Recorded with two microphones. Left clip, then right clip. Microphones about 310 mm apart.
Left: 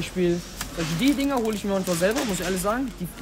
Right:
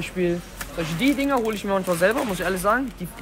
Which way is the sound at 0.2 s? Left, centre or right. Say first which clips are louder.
Even; centre.